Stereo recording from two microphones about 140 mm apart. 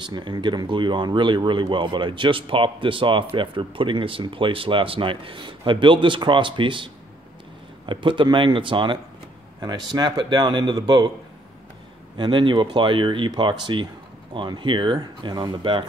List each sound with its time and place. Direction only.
0.0 s speech: 30° right (ahead or behind)
12.2 s speech: 35° right (ahead or behind)